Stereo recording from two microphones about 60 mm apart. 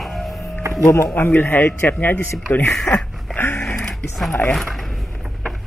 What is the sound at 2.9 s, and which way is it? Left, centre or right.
Speech, left.